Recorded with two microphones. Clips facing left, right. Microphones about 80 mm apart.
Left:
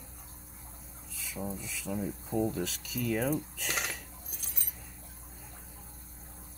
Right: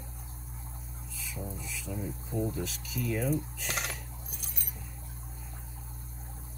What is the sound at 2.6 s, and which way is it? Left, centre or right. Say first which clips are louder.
Speech: left 1 dB; left.